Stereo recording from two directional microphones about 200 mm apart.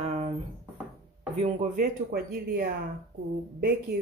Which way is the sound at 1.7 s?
50° right (ahead or behind).